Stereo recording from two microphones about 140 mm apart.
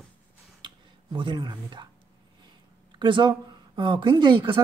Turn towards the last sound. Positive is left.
turn(degrees=-35)  # may be behind; listen again after turning